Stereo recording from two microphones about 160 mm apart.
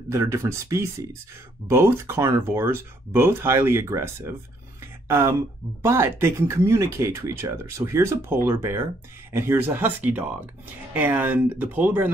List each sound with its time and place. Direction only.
0.1 s speech: 15° right (ahead or behind)